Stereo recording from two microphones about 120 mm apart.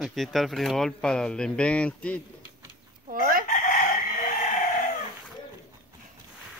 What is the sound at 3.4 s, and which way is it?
Chicken, 90° left.